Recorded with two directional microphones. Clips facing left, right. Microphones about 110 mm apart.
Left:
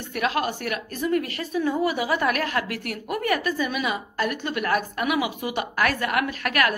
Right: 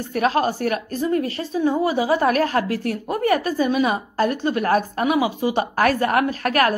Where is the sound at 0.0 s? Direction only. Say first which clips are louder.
Right 6 dB; 35° right (ahead or behind).